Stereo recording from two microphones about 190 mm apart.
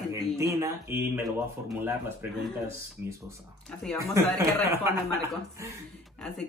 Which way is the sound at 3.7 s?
Centre (ahead or behind).